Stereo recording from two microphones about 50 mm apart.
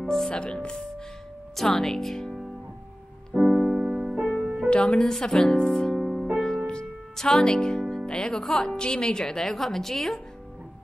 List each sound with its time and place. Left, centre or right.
0.0 s speech: centre
1.5 s speech: centre
3.3 s music: centre
4.6 s speech: left
5.9 s music: centre
6.3 s music: centre
7.9 s speech: centre